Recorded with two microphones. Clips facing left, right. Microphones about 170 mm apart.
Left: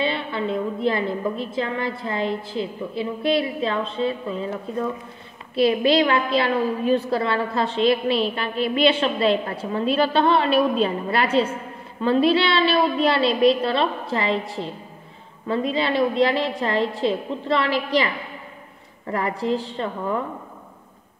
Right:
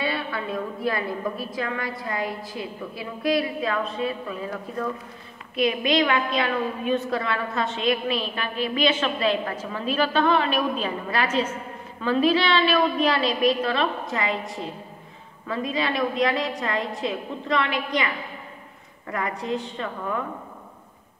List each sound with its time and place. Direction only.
0.0 s a woman's voice: 25° left (ahead or behind)